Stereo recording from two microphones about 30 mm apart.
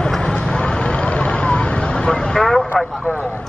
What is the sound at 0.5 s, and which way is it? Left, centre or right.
Vehicle, left.